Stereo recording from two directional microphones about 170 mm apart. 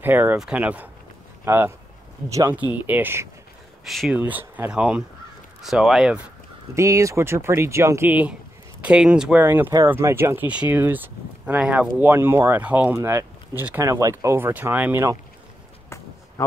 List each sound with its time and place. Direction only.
0.0 s speech: 10° right (ahead or behind)
3.8 s speech: centre (ahead or behind)
4.2 s speech: 10° right (ahead or behind)
6.7 s speech: 15° right (ahead or behind)